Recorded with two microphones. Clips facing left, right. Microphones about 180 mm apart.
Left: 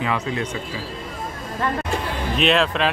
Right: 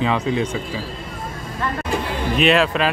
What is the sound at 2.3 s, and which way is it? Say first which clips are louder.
Speech: right 2 dB; 5° right (ahead or behind).